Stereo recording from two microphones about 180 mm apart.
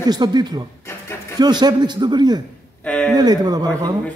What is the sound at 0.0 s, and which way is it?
A man's voice, 20° right (ahead or behind).